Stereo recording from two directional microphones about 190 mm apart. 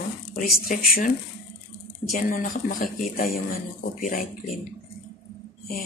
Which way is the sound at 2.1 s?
45° left (ahead or behind).